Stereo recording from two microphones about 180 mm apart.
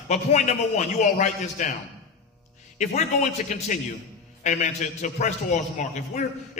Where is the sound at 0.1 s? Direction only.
40° left (ahead or behind).